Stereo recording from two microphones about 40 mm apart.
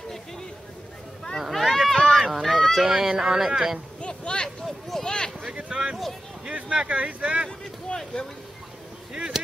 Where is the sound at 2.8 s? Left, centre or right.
Centre.